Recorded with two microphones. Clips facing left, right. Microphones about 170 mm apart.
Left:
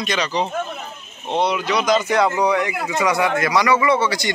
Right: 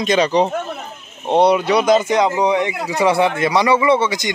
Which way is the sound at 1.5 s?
30° right (ahead or behind).